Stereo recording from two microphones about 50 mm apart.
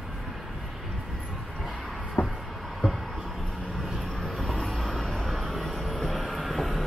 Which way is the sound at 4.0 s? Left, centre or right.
Centre.